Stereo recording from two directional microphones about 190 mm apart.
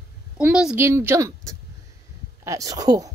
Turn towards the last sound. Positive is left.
turn(degrees=-20)  # may be behind; listen again after turning